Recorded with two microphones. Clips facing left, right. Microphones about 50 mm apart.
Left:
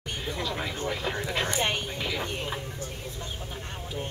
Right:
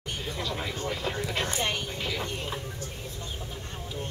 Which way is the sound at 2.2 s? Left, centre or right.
Centre.